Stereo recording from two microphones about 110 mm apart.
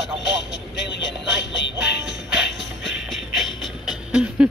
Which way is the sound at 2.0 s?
Centre (ahead or behind).